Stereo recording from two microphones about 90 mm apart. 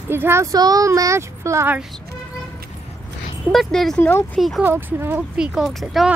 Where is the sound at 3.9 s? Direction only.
20° left (ahead or behind).